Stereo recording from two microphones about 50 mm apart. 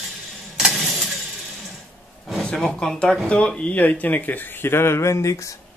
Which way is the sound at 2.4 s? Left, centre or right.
Centre.